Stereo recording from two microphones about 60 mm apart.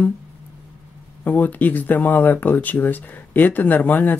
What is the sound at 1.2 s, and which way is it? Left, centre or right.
Speech, left.